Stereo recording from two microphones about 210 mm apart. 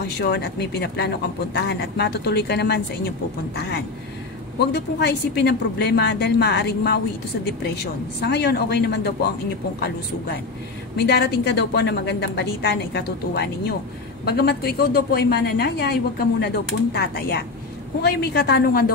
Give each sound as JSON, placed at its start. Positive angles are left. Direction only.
{"t": 0.2, "sound": "a woman's voice", "side_deg": 50}